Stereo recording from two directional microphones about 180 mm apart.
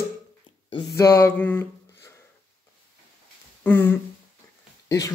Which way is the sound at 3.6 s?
10° left (ahead or behind).